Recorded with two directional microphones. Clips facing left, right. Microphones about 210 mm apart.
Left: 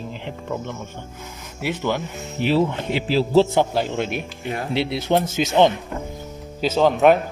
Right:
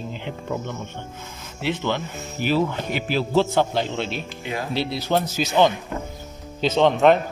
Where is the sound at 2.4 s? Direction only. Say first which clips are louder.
Left 2 dB; 25° left (ahead or behind).